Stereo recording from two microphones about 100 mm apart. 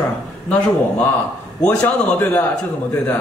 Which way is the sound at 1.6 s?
20° left (ahead or behind).